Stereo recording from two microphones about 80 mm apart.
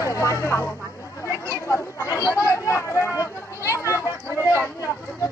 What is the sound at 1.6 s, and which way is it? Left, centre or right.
Chatter, left.